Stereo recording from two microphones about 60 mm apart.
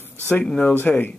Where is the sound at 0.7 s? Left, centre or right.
Left.